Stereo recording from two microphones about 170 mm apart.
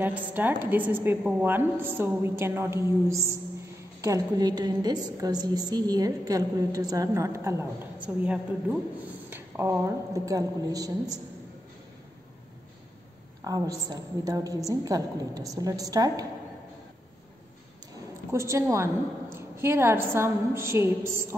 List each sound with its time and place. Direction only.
0.0 s a woman's voice: 10° right (ahead or behind)
13.4 s a woman's voice: 20° right (ahead or behind)
18.3 s a woman's voice: 15° right (ahead or behind)